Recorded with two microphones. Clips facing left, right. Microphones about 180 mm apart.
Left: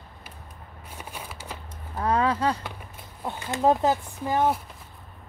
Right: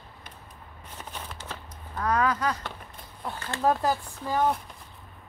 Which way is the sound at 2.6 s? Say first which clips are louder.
Left 1 dB; 10° left (ahead or behind).